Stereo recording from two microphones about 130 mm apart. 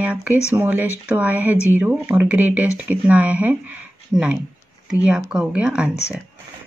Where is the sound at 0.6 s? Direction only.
15° right (ahead or behind).